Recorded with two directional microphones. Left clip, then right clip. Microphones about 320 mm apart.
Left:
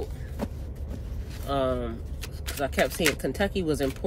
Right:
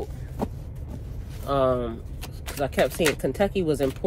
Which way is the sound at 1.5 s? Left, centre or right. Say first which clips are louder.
Right 4 dB; centre.